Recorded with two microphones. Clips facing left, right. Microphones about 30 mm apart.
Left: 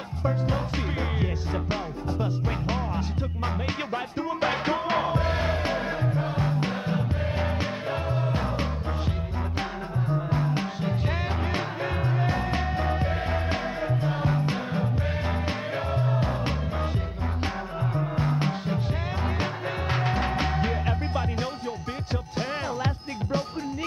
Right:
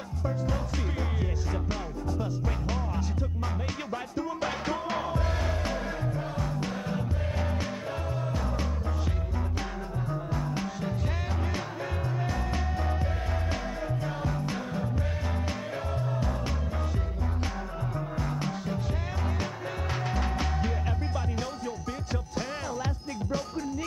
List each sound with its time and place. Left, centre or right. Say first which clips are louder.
1.2 s music: left 3 dB; left
17.9 s music: left 7 dB; left